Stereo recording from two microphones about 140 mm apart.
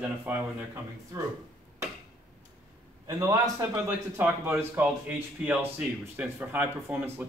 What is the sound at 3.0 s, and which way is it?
A man's voice, 20° right (ahead or behind).